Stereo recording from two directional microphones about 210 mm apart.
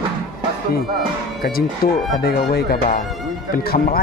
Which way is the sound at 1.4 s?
45° left (ahead or behind).